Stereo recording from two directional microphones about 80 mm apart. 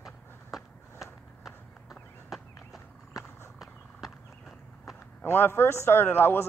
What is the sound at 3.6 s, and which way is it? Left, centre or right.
Horse, centre.